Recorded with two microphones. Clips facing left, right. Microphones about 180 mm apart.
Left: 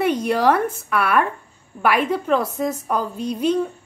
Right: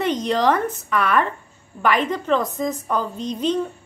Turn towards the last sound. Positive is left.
turn(degrees=10)  # may be behind; listen again after turning